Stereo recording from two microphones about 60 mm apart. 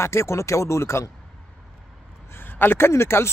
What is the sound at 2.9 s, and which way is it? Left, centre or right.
Speech, left.